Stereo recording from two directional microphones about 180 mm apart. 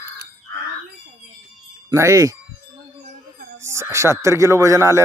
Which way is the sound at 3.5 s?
15° right (ahead or behind).